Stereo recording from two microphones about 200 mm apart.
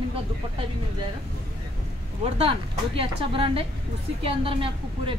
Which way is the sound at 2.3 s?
30° right (ahead or behind).